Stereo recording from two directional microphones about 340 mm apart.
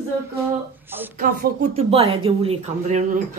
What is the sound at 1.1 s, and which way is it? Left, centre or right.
Speech, right.